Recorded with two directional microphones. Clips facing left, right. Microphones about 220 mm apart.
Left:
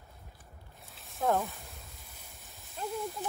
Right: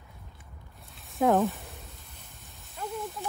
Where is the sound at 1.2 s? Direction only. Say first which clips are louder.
Right 7 dB; 75° right (ahead or behind).